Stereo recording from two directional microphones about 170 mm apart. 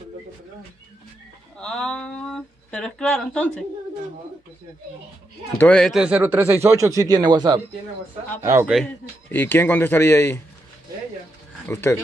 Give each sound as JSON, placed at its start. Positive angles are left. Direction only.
{"t": 1.6, "sound": "a sound", "side_deg": 5}
{"t": 5.6, "sound": "a man's voice", "side_deg": 5}
{"t": 8.6, "sound": "speech", "side_deg": 0}
{"t": 9.3, "sound": "speech", "side_deg": 10}
{"t": 11.6, "sound": "speech", "side_deg": 15}